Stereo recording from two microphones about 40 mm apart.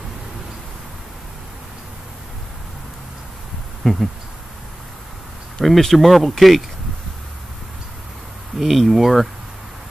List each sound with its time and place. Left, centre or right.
3.8 s speech: centre
5.6 s speech: centre
8.5 s speech: centre